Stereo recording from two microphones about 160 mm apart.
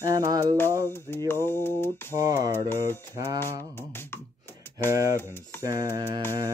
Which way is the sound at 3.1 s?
25° right (ahead or behind).